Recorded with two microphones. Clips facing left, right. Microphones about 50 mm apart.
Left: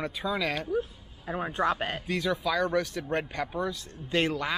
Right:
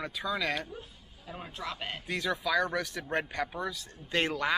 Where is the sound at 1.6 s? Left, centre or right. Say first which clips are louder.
Left 10 dB; left.